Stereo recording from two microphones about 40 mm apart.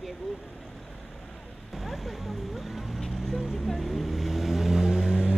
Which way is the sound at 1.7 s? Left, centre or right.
Centre.